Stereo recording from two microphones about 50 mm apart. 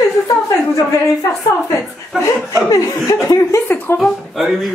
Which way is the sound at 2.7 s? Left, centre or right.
Left.